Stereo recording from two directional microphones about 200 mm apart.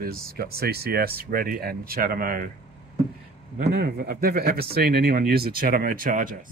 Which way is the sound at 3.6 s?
50° right (ahead or behind).